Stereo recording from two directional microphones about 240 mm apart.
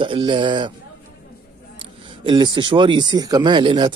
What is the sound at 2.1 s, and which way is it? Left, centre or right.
A man's voice, centre.